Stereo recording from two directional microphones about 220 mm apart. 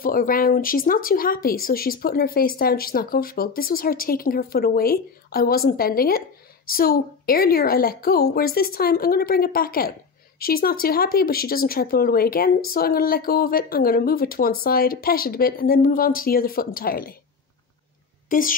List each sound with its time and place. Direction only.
0.0 s a woman's voice: 40° left (ahead or behind)
18.3 s speech: 40° left (ahead or behind)